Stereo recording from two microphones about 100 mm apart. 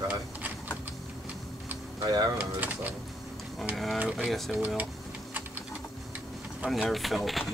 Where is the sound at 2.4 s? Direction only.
15° right (ahead or behind).